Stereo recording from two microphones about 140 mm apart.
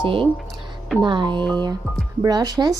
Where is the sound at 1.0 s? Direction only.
35° right (ahead or behind).